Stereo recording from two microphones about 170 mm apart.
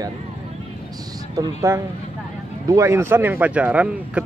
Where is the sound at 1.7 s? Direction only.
15° right (ahead or behind).